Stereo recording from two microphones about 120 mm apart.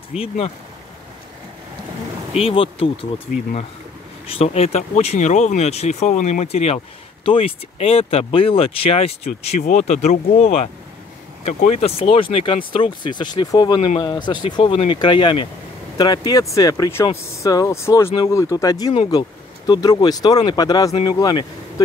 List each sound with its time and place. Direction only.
0.1 s speech: 5° right (ahead or behind)
2.3 s speech: 50° left (ahead or behind)
4.3 s speech: 55° left (ahead or behind); by 21.8 s 35° left (ahead or behind)